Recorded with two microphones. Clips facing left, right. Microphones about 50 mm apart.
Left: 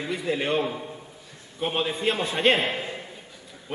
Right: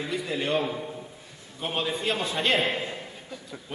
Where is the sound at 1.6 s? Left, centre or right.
Left.